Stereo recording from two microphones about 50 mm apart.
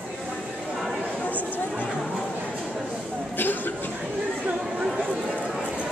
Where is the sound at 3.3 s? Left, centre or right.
Left.